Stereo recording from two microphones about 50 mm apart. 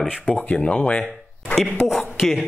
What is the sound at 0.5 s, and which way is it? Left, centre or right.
Speech, left.